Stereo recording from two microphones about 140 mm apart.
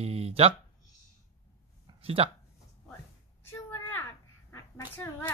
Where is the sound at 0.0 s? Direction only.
45° right (ahead or behind).